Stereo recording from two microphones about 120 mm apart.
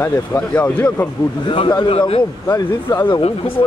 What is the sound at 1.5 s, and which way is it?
Speech, 40° left (ahead or behind).